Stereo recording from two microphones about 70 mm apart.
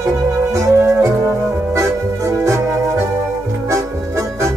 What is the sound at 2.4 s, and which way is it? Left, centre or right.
Organ, right.